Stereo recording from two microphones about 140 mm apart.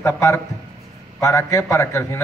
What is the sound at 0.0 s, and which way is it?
A man's voice, 20° left (ahead or behind).